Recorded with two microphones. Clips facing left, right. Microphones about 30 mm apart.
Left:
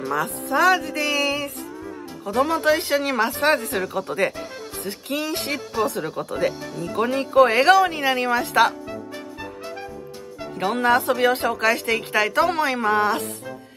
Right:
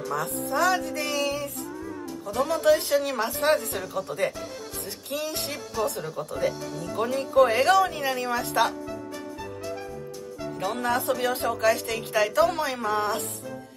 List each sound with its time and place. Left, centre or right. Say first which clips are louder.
0.1 s speech: left 5 dB; left
2.2 s a woman's voice: left 3 dB; left
7.0 s speech: left 4 dB; left
8.8 s music: left 2 dB; left
10.6 s speech: left 7 dB; left
10.9 s a woman's voice: left 7 dB; left